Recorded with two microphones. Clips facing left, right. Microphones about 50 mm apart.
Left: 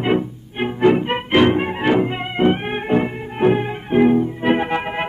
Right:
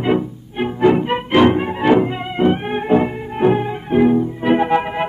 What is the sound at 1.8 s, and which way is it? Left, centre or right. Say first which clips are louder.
Music: right 4 dB; centre.